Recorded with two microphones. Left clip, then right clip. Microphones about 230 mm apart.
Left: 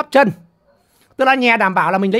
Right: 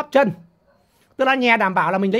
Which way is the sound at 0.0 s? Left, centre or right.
Centre.